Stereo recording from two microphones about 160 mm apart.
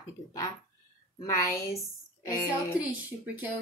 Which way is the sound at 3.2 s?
10° right (ahead or behind).